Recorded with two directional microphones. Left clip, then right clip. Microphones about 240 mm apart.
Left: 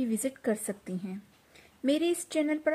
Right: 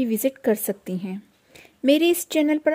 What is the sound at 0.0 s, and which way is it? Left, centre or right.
A woman's voice, right.